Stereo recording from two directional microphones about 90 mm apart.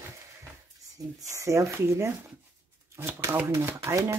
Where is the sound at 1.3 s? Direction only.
35° right (ahead or behind).